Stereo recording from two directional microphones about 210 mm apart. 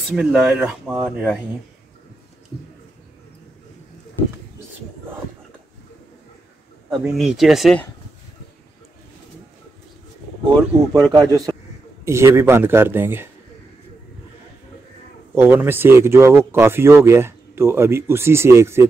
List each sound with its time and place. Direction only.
0.1 s speech: centre (ahead or behind)
6.9 s speech: centre (ahead or behind)
10.9 s a man's voice: 20° right (ahead or behind)
15.3 s speech: 10° right (ahead or behind)